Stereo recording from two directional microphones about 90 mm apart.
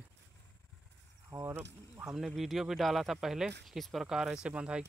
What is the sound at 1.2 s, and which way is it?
Speech, 30° right (ahead or behind).